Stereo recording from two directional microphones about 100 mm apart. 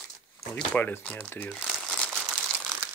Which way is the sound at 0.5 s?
20° left (ahead or behind).